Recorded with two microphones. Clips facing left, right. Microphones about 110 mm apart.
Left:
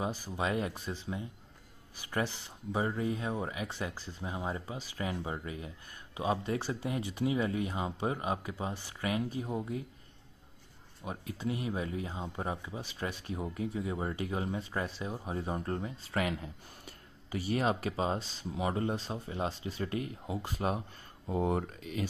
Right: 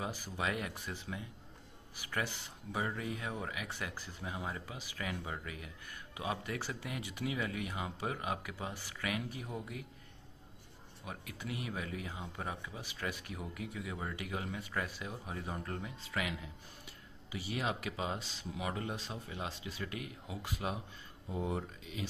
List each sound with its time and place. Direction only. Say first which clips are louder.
0.0 s speech: left 4 dB; 25° left (ahead or behind)
11.0 s speech: left 6 dB; 30° left (ahead or behind)
21.3 s speech: left 7 dB; 55° left (ahead or behind)